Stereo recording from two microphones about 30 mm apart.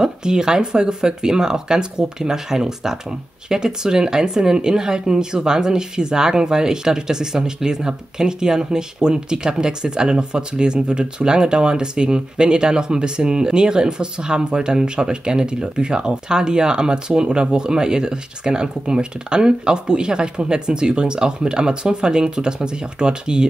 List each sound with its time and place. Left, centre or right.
0.0 s speech: right